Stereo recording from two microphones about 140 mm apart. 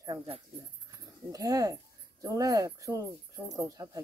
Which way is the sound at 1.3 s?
25° right (ahead or behind).